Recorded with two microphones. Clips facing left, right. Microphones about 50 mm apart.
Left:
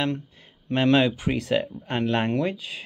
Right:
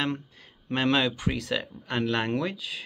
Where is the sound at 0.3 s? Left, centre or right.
Centre.